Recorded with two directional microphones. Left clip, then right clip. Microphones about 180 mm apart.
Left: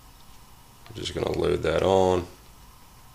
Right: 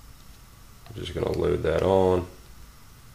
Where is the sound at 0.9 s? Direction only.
20° left (ahead or behind).